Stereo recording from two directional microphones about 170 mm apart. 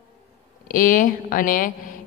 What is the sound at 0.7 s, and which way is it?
A woman's voice, 50° left (ahead or behind).